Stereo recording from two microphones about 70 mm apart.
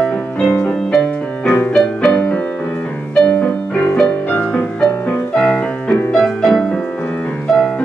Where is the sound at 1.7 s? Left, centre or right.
Centre.